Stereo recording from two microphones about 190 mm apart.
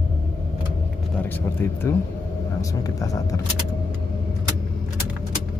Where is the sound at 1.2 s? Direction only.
10° left (ahead or behind).